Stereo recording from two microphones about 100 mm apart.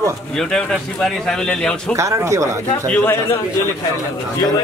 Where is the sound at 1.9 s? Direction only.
30° right (ahead or behind).